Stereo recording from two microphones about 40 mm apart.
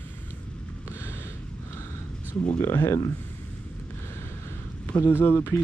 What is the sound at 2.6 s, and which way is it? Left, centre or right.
Speech, left.